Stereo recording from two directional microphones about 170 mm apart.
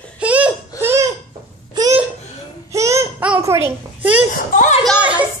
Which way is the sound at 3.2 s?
10° right (ahead or behind).